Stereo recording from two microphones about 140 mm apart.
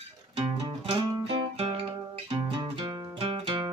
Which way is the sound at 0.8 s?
40° right (ahead or behind).